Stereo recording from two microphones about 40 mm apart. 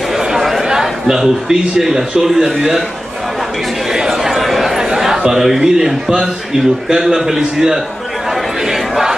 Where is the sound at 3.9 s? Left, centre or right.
Centre.